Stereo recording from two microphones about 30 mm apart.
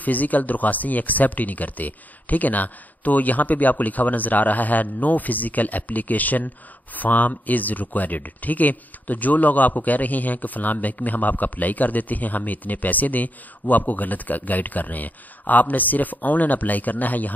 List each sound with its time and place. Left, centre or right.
0.0 s speech: left